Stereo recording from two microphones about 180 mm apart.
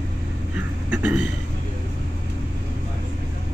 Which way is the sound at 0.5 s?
10° right (ahead or behind).